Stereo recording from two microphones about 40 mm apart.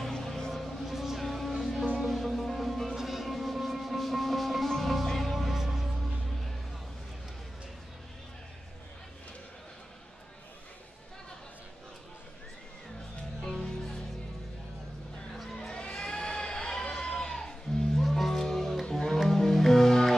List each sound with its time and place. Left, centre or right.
0.0 s a sound: centre
0.8 s music: centre
13.4 s music: centre
15.5 s crowd: left
18.0 s music: centre